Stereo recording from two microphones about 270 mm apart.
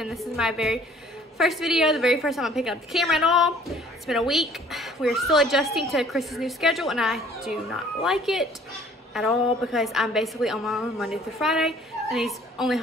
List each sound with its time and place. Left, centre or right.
0.0 s a woman's voice: centre